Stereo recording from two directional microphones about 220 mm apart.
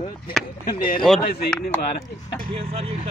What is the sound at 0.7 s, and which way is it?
Speech, 40° left (ahead or behind).